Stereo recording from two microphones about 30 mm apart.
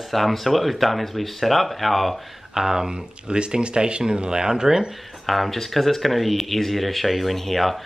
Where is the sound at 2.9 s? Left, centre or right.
Right; by 4.9 s centre.